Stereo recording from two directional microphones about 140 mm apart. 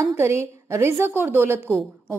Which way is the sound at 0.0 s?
20° right (ahead or behind).